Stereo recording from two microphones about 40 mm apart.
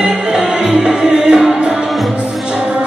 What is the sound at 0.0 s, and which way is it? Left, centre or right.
Music, centre.